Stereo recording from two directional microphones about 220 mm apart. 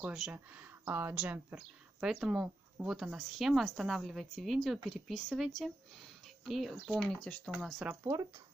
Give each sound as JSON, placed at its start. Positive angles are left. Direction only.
{"t": 0.0, "sound": "speech", "side_deg": -5}
{"t": 8.0, "sound": "speech", "side_deg": -15}